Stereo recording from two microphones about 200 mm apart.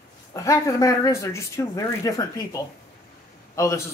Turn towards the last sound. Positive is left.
turn(degrees=15)  # may be behind; listen again after turning